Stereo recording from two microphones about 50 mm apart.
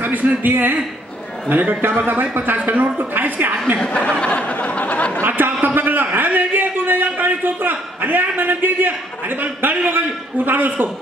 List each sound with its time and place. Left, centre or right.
0.0 s a man's voice: right
3.8 s speech: left
4.3 s a sound: left
5.2 s speech: right
5.8 s a sound: right
6.1 s a man's voice: right